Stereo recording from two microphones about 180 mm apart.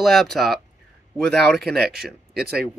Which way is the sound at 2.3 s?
60° right (ahead or behind).